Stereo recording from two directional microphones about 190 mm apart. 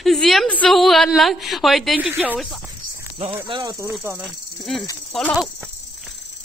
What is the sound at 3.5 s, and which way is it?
Speech, 20° right (ahead or behind).